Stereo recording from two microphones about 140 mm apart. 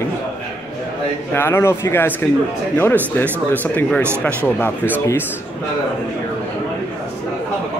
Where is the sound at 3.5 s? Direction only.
10° left (ahead or behind).